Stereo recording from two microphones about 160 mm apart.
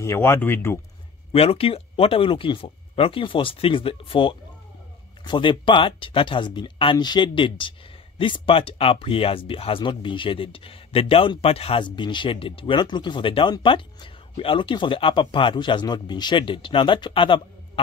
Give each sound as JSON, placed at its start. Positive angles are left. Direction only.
{"t": 0.0, "sound": "speech", "side_deg": 15}
{"t": 1.3, "sound": "speech", "side_deg": 35}